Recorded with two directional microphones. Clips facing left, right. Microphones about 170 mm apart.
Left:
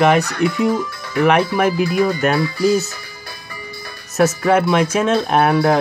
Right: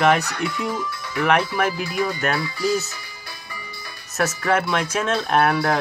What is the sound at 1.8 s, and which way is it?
Speech, 45° left (ahead or behind).